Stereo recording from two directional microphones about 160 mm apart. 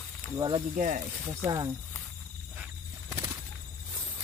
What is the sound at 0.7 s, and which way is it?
Speech, 50° right (ahead or behind).